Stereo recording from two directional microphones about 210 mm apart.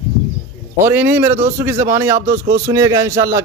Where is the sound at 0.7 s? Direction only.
10° right (ahead or behind).